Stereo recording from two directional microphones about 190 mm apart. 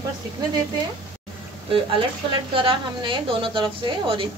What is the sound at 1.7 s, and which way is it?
A woman's voice, 30° right (ahead or behind).